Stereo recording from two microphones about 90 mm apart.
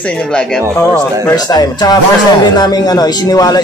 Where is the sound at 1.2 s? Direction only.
45° left (ahead or behind).